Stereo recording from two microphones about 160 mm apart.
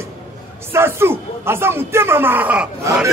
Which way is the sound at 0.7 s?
15° right (ahead or behind).